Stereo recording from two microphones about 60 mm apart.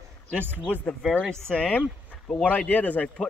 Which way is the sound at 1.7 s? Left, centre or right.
Left.